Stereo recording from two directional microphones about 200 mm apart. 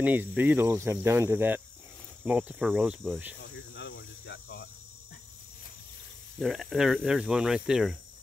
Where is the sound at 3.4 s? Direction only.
60° left (ahead or behind).